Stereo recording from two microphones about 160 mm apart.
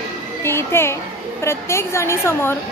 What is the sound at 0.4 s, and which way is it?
A child's voice, 15° left (ahead or behind).